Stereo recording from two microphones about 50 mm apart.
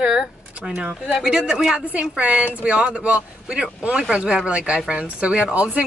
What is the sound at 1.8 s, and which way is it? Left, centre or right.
Speech, right.